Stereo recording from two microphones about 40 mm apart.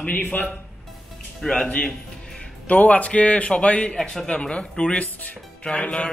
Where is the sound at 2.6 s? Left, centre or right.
Left.